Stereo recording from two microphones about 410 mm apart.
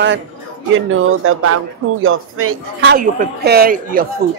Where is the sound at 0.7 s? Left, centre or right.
Right.